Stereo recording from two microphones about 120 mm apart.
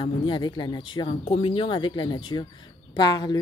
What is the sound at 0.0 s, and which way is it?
Speech, 45° left (ahead or behind).